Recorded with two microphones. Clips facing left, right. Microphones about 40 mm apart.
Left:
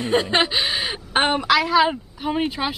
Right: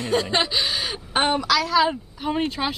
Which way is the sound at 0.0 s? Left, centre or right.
Left.